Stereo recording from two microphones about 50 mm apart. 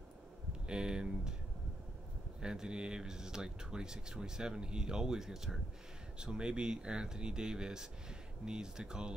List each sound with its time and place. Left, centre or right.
0.7 s speech: centre
2.4 s speech: centre